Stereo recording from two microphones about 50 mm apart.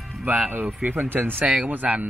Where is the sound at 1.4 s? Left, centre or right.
Right.